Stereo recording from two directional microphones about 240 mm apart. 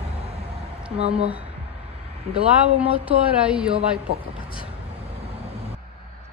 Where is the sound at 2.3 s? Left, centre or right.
Centre.